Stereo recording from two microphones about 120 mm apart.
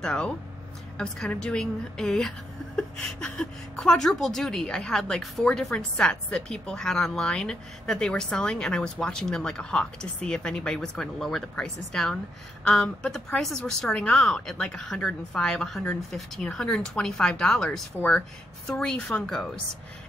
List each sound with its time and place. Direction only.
0.0 s a woman's voice: 5° left (ahead or behind)